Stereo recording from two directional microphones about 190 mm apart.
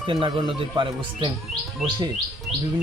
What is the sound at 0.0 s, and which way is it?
Speech, 25° right (ahead or behind).